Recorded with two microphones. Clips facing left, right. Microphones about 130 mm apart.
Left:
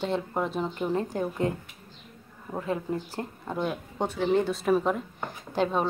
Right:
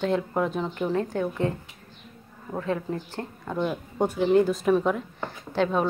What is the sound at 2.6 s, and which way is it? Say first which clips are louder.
Speech: right 1 dB; 10° left (ahead or behind).